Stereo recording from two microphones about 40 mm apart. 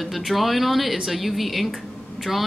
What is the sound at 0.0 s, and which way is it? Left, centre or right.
Speech, centre.